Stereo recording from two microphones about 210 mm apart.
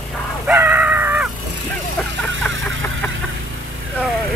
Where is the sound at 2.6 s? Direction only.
70° right (ahead or behind).